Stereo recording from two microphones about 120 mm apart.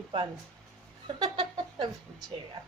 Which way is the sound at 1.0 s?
45° right (ahead or behind).